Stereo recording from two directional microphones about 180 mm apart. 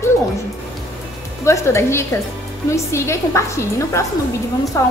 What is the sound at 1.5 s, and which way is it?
A woman's voice, 15° left (ahead or behind).